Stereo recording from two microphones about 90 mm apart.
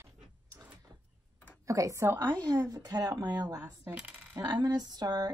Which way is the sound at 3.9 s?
15° right (ahead or behind).